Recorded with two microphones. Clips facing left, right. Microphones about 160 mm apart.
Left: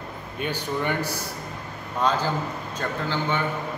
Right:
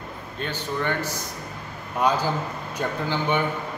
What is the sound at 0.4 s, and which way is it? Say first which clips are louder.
Speech: left 1 dB; 15° left (ahead or behind).